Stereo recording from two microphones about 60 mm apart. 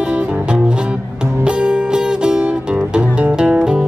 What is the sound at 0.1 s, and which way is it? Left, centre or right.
Music, centre.